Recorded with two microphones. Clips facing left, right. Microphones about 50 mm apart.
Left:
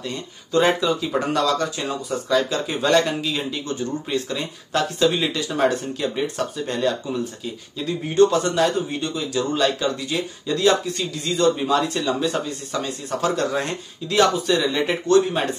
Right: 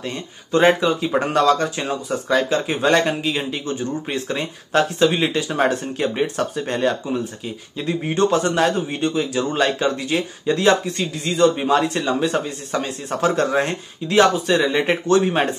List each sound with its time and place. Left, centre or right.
0.0 s speech: right